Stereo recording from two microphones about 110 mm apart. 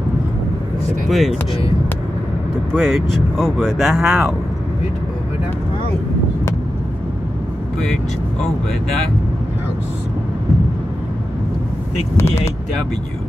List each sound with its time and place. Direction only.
1.0 s speech: centre (ahead or behind)
2.7 s speech: centre (ahead or behind)
12.2 s speech: 25° left (ahead or behind)